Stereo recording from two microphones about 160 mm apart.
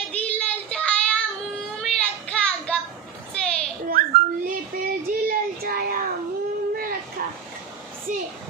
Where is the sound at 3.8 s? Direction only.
65° right (ahead or behind).